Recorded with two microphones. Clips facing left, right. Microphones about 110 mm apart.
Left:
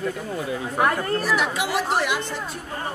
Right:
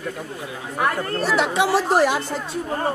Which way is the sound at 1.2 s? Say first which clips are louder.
Right 4 dB; 30° right (ahead or behind).